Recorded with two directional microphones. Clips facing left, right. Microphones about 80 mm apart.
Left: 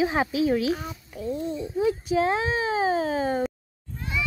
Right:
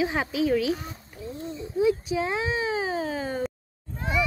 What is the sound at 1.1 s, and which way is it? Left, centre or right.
Speech, left.